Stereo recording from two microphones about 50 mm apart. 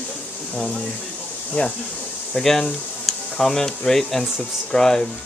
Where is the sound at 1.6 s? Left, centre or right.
Left.